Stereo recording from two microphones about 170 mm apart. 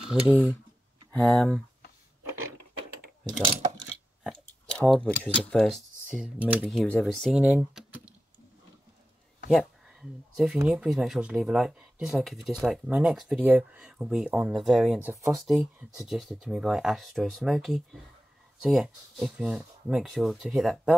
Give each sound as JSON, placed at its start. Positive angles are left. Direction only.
{"t": 0.1, "sound": "speech", "side_deg": -10}
{"t": 1.3, "sound": "speech", "side_deg": 5}
{"t": 4.2, "sound": "speech", "side_deg": 5}
{"t": 6.7, "sound": "speech", "side_deg": 5}
{"t": 9.5, "sound": "speech", "side_deg": 0}